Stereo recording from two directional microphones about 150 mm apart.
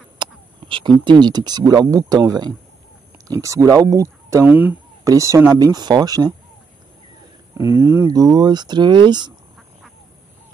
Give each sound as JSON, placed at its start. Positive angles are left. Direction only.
{"t": 0.2, "sound": "speech", "side_deg": -35}
{"t": 7.5, "sound": "speech", "side_deg": -15}